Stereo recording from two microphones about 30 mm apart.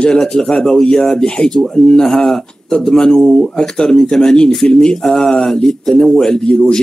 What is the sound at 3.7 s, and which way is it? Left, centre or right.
Speech, left.